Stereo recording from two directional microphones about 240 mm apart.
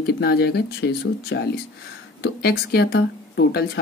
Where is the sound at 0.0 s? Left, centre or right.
Left.